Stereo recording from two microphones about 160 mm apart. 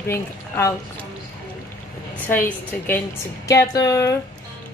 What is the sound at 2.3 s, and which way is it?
Speech, 10° left (ahead or behind).